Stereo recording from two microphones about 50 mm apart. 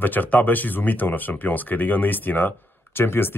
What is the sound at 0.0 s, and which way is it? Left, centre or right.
Speech, left.